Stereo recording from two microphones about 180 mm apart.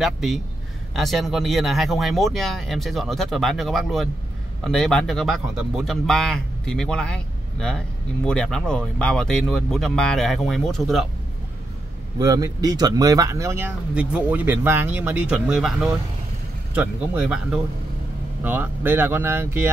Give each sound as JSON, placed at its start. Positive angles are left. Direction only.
{"t": 0.0, "sound": "speech", "side_deg": 0}
{"t": 12.2, "sound": "speech", "side_deg": -20}
{"t": 16.7, "sound": "speech", "side_deg": -5}